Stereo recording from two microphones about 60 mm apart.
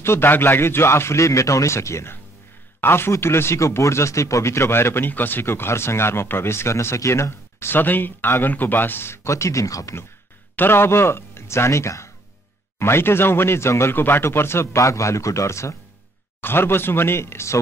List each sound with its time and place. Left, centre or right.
0.0 s speech: left
2.8 s speech: left
10.5 s speech: left
16.3 s speech: left